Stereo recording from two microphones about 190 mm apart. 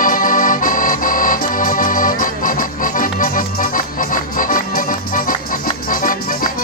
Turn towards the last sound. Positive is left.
turn(degrees=45)  # may be behind; listen again after turning